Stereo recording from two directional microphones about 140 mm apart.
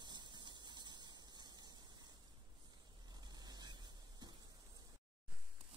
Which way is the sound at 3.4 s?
30° right (ahead or behind).